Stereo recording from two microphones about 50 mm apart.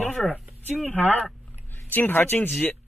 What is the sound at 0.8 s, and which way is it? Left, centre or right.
Speech, left.